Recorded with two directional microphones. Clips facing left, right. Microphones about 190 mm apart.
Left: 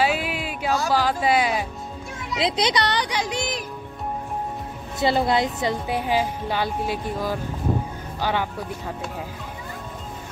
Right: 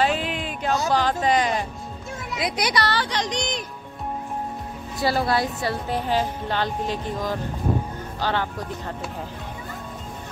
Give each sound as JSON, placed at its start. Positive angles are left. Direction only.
{"t": 0.0, "sound": "a sound", "side_deg": 10}
{"t": 0.9, "sound": "a woman's voice", "side_deg": 5}
{"t": 2.3, "sound": "a child's voice", "side_deg": 25}
{"t": 4.9, "sound": "a woman's voice", "side_deg": 20}